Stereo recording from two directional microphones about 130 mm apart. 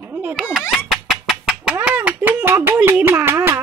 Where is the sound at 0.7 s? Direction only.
Centre (ahead or behind).